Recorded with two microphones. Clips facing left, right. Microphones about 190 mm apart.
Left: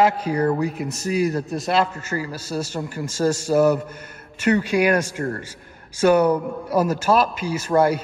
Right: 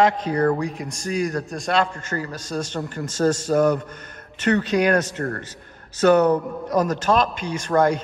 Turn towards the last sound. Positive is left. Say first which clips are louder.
# left 1 dB
turn(degrees=5)  # may be behind; listen again after turning